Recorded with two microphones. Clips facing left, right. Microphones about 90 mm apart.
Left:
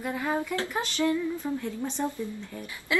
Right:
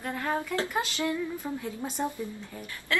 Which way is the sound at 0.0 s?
10° left (ahead or behind).